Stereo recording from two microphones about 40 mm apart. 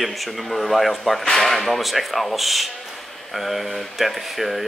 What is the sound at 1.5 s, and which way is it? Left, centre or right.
Speech, centre.